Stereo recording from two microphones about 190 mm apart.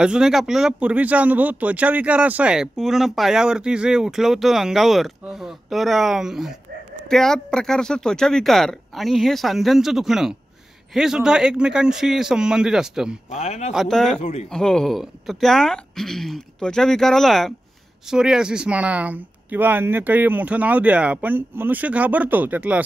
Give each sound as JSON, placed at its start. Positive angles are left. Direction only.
{"t": 0.0, "sound": "speech", "side_deg": -5}
{"t": 13.3, "sound": "speech", "side_deg": 35}
{"t": 13.7, "sound": "speech", "side_deg": 0}